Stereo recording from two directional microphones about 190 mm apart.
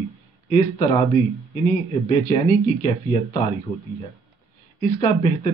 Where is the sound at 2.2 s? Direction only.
30° left (ahead or behind).